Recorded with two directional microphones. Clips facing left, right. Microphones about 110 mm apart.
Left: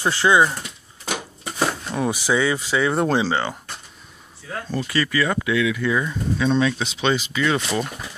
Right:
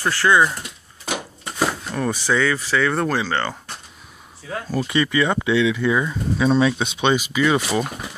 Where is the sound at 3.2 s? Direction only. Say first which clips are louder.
Left 1 dB; 5° left (ahead or behind).